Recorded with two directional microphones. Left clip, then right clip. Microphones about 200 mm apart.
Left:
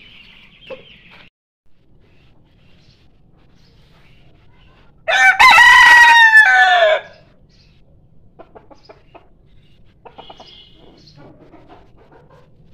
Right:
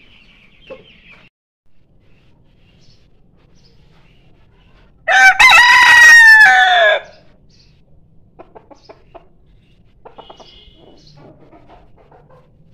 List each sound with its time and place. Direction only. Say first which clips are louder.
5.0 s chicken: right 2 dB; 15° right (ahead or behind)
8.4 s chicken: right 2 dB; 10° right (ahead or behind)